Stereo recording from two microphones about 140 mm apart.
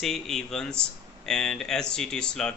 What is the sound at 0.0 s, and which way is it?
A man's voice, 5° left (ahead or behind).